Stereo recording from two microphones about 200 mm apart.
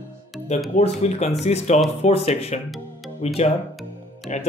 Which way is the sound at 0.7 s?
30° left (ahead or behind).